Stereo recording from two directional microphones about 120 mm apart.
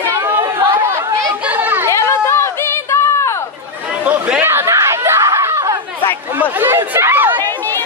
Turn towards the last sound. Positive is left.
turn(degrees=-20)  # may be behind; listen again after turning